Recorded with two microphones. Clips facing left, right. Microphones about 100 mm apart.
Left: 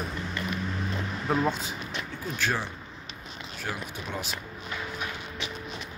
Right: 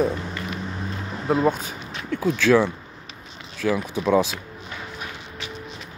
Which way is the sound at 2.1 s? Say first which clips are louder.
Right 14 dB; 90° right.